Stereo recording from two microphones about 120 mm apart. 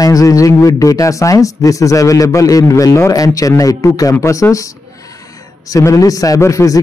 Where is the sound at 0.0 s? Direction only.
30° left (ahead or behind).